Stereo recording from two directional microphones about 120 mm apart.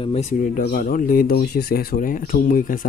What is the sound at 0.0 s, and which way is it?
Speech, 65° left (ahead or behind).